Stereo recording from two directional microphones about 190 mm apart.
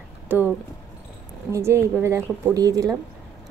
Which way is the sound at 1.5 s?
15° right (ahead or behind).